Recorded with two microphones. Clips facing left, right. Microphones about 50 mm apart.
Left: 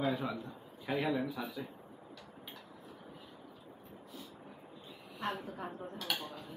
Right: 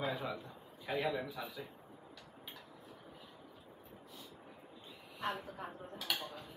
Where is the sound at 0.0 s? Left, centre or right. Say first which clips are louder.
Left 4 dB; centre.